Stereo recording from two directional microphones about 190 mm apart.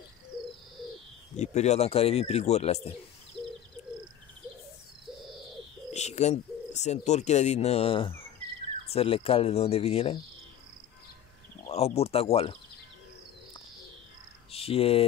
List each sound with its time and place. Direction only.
1.3 s speech: 35° left (ahead or behind)
5.9 s speech: 35° left (ahead or behind)
11.6 s speech: 35° left (ahead or behind)
14.5 s speech: 30° left (ahead or behind)